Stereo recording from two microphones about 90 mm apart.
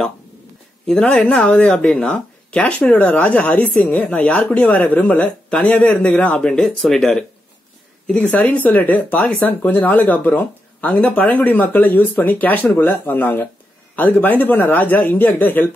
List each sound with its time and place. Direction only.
0.8 s speech: 10° left (ahead or behind)